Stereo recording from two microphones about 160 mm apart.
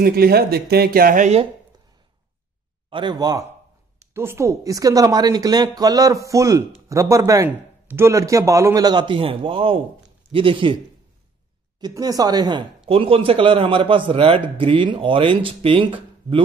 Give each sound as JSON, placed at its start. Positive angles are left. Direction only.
{"t": 0.0, "sound": "speech", "side_deg": -70}
{"t": 2.9, "sound": "a woman's voice", "side_deg": -30}
{"t": 11.8, "sound": "speech", "side_deg": -25}